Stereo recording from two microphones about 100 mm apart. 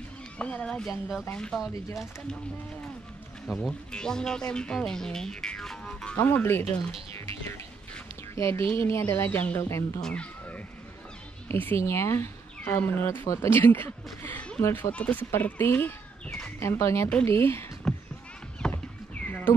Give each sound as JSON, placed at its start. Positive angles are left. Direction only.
{"t": 0.4, "sound": "speech", "side_deg": 10}
{"t": 3.4, "sound": "speech", "side_deg": 0}
{"t": 6.1, "sound": "speech", "side_deg": 20}
{"t": 10.0, "sound": "speech", "side_deg": 10}
{"t": 11.4, "sound": "speech", "side_deg": 20}
{"t": 16.3, "sound": "speech", "side_deg": 5}
{"t": 16.5, "sound": "speech", "side_deg": 30}
{"t": 17.9, "sound": "a sound", "side_deg": 5}
{"t": 19.2, "sound": "a sound", "side_deg": 20}